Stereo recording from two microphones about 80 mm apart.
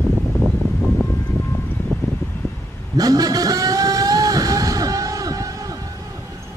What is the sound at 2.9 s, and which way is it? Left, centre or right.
Music, right.